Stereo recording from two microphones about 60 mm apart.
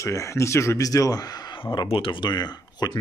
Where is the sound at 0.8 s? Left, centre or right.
Left.